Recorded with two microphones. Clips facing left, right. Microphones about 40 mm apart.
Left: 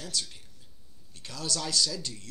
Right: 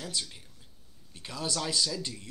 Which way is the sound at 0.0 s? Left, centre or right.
Centre.